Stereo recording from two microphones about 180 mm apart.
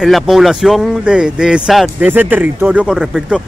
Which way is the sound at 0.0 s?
Centre (ahead or behind).